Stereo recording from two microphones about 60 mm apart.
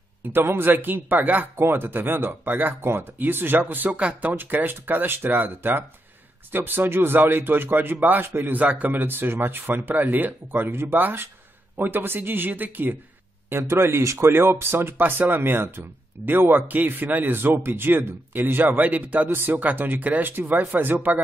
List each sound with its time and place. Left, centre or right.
0.3 s a man's voice: right
10.7 s speech: right
11.0 s a man's voice: right
13.5 s a man's voice: right